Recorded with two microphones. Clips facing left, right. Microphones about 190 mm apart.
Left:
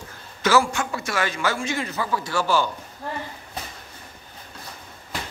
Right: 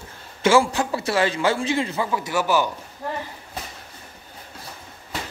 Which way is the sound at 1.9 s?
20° right (ahead or behind).